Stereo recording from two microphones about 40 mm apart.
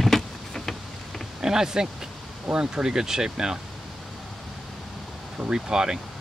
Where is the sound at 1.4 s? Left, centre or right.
Centre.